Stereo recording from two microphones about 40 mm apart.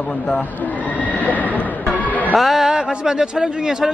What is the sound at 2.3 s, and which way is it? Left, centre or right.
A man's voice, centre.